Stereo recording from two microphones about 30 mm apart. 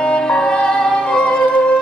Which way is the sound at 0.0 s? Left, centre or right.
Left.